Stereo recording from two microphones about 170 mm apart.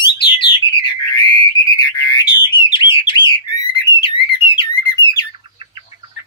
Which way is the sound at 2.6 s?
30° left (ahead or behind).